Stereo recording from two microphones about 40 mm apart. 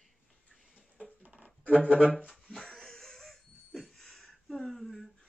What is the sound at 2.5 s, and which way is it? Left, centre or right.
Wheeze, centre.